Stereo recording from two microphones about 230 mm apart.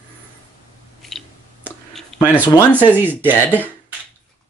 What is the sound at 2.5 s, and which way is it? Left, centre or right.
Speech, centre.